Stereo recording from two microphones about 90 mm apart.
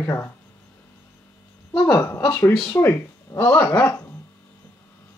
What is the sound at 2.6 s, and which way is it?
Speech, 30° left (ahead or behind).